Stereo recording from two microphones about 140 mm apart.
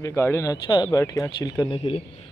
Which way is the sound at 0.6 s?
30° left (ahead or behind).